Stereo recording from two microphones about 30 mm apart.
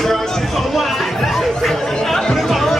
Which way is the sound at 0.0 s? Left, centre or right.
Centre.